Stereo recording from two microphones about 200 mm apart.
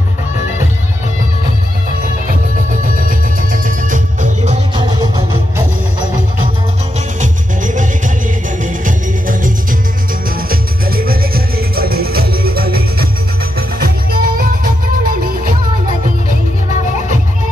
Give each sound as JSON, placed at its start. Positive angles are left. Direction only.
{"t": 2.7, "sound": "music", "side_deg": -45}
{"t": 4.7, "sound": "music", "side_deg": -20}
{"t": 7.2, "sound": "music", "side_deg": -40}